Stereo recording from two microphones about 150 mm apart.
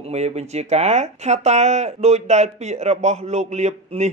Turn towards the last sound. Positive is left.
turn(degrees=-50)  # may be behind; listen again after turning